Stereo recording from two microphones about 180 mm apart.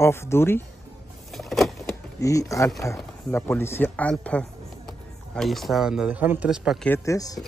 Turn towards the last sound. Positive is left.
turn(degrees=20)  # may be behind; listen again after turning